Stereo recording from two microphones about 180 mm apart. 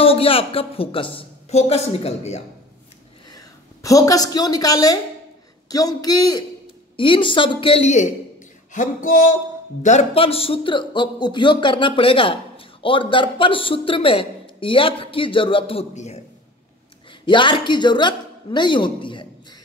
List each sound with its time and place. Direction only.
0.0 s a woman's voice: 30° left (ahead or behind)
3.3 s a woman's voice: 20° left (ahead or behind); by 8.1 s 40° left (ahead or behind)
8.7 s music: 45° left (ahead or behind)
9.8 s speech: 35° left (ahead or behind)
17.3 s speech: 25° left (ahead or behind)